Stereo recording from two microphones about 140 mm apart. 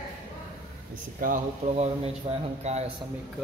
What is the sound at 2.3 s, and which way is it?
Speech, 40° right (ahead or behind).